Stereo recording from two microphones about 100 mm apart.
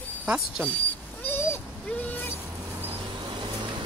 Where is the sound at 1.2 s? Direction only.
20° left (ahead or behind).